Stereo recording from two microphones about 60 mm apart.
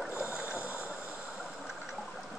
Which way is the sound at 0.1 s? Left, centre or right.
Left.